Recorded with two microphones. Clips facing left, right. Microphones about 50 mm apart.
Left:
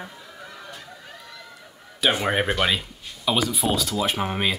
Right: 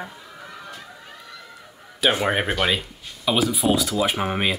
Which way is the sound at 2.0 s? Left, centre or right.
Centre.